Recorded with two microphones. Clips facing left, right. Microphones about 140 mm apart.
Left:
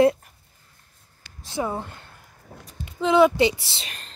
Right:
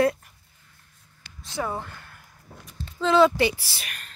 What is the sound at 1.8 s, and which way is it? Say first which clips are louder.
Speech: left 2 dB; 20° left (ahead or behind).